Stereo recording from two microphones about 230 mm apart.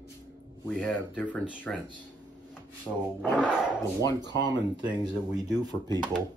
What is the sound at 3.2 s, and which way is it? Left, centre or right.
Speech, centre.